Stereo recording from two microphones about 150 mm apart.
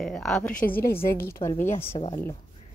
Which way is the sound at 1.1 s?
15° left (ahead or behind).